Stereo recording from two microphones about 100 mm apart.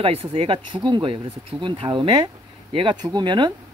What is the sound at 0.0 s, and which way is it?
Speech, 70° right (ahead or behind).